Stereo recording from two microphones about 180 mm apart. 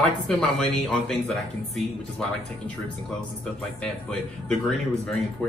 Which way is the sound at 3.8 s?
5° left (ahead or behind).